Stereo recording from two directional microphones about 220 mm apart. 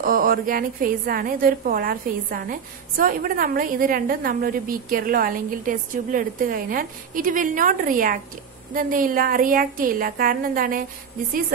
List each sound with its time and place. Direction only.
0.0 s a woman's voice: 40° right (ahead or behind)